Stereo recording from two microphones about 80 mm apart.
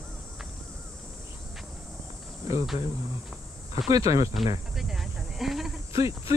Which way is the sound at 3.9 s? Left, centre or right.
Right.